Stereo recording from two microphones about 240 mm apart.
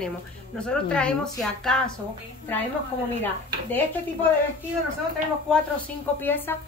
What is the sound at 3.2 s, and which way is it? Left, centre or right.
Speech, centre.